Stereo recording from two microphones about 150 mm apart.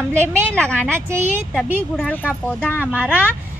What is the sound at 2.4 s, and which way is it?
Speech, 15° left (ahead or behind).